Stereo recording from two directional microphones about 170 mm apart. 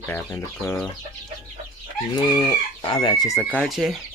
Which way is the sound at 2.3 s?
25° left (ahead or behind).